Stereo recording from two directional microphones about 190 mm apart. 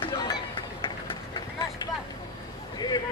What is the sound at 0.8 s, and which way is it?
Vehicle, 25° left (ahead or behind).